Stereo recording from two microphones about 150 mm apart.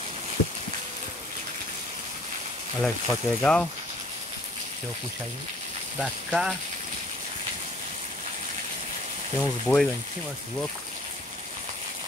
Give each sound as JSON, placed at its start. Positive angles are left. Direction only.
{"t": 2.8, "sound": "speech", "side_deg": 5}
{"t": 5.9, "sound": "speech", "side_deg": -5}
{"t": 9.4, "sound": "speech", "side_deg": 5}